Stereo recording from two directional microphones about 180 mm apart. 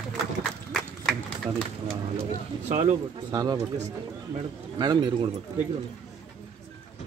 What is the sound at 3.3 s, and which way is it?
Speech, 20° right (ahead or behind).